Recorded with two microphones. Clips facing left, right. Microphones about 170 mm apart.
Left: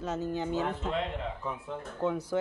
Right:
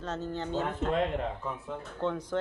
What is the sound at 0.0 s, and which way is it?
Speech, 10° left (ahead or behind).